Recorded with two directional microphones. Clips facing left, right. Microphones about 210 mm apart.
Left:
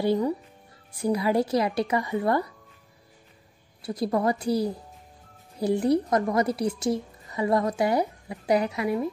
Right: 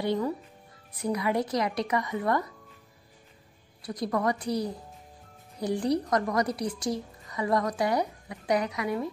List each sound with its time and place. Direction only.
1.0 s a woman's voice: 30° left (ahead or behind)
3.8 s a woman's voice: 25° left (ahead or behind)